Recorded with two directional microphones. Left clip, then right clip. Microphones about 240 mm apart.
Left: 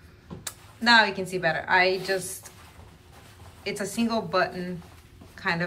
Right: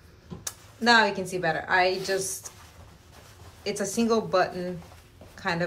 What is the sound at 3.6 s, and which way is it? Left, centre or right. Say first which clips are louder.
A woman's voice: right 2 dB; centre.